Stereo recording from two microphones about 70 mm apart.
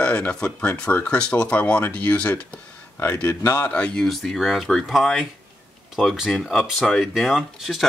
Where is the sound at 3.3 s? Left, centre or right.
Left.